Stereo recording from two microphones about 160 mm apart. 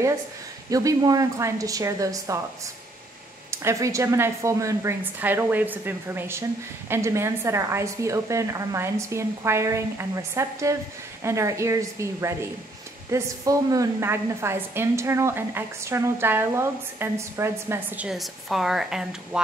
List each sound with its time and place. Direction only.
0.7 s speech: 20° right (ahead or behind)
3.4 s a woman's voice: 15° right (ahead or behind)